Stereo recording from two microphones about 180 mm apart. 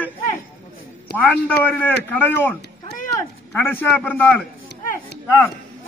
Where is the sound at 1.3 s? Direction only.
10° left (ahead or behind).